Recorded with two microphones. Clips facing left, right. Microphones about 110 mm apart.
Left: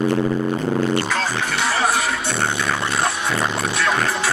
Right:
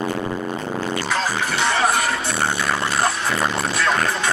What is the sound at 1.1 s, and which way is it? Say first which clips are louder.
Music: even; centre (ahead or behind).